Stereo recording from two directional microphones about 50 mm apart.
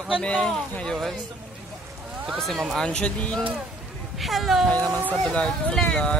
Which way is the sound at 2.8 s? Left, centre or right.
Left.